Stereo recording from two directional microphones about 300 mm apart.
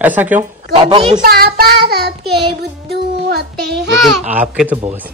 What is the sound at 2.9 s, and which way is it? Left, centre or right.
Speech, right.